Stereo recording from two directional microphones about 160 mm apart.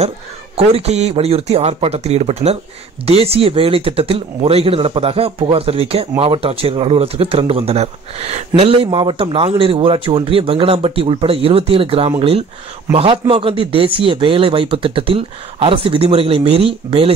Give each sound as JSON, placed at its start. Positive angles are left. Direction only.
{"t": 0.6, "sound": "speech", "side_deg": -40}